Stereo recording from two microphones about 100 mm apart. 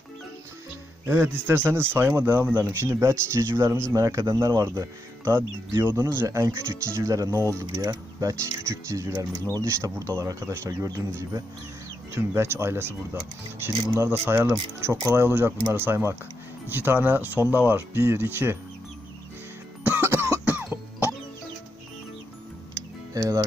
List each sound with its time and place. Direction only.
1.0 s speech: 25° right (ahead or behind)
7.7 s speech: 40° right (ahead or behind)
14.2 s speech: 25° right (ahead or behind)
19.9 s cough: 25° right (ahead or behind)
20.5 s music: 20° right (ahead or behind)
22.8 s music: 35° right (ahead or behind)